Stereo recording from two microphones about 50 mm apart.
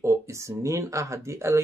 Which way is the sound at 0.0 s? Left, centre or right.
Right.